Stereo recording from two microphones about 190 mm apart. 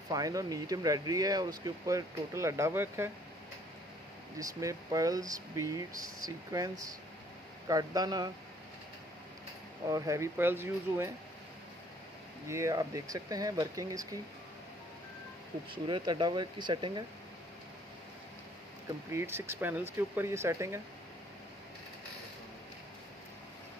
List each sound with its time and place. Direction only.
0.1 s speech: 20° right (ahead or behind)
4.4 s speech: 15° right (ahead or behind)
9.8 s speech: 15° right (ahead or behind)
12.4 s speech: 15° right (ahead or behind)
15.7 s speech: 25° right (ahead or behind)
19.1 s speech: 15° right (ahead or behind)